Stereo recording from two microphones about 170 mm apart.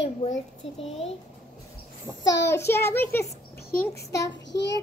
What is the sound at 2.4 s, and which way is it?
Speech, 15° left (ahead or behind).